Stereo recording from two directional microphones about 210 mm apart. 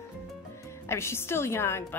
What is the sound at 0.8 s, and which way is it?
Speech, 10° left (ahead or behind).